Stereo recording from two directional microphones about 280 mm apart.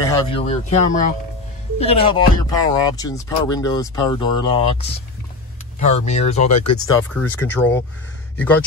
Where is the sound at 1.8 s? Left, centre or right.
Left.